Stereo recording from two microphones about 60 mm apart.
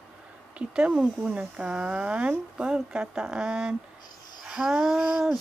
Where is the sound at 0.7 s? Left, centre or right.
Centre.